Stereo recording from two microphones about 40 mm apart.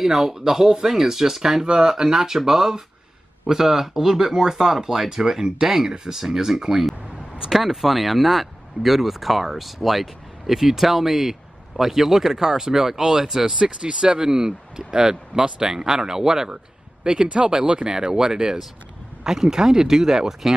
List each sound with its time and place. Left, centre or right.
0.0 s speech: centre
13.6 s speech: right